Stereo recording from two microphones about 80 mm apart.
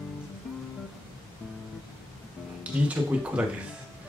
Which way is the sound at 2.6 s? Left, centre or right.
Centre.